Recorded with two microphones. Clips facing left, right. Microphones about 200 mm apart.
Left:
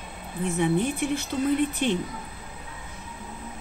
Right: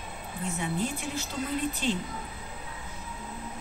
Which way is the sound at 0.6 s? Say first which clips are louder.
Left 9 dB; 60° left (ahead or behind).